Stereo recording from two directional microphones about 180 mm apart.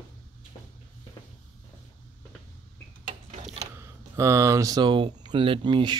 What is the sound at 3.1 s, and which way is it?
Mechanisms, 40° right (ahead or behind).